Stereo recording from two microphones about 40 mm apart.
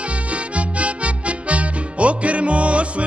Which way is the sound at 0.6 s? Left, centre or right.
Right.